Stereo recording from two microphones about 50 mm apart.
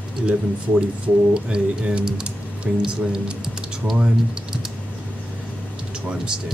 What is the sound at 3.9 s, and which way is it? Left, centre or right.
Speech, centre.